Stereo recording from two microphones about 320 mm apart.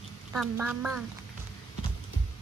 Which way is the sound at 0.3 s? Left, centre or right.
Centre.